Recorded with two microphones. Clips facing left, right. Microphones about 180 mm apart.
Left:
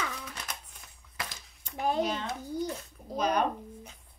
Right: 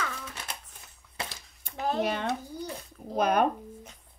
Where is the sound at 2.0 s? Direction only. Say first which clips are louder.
Right 2 dB; 60° right (ahead or behind).